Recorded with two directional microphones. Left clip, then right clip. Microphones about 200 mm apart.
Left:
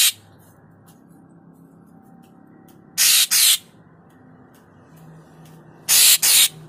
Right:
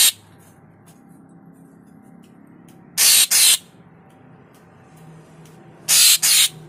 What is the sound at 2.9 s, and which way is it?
Spray, 15° right (ahead or behind).